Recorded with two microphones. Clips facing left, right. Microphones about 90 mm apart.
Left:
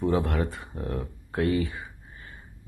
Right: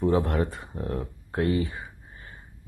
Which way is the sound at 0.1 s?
30° right (ahead or behind).